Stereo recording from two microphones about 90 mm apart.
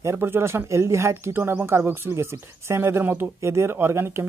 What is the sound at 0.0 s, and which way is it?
Speech, 30° right (ahead or behind).